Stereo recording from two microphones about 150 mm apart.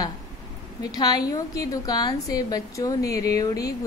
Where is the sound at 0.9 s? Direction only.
25° left (ahead or behind).